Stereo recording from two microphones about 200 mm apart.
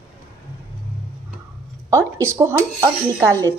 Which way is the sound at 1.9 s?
15° right (ahead or behind).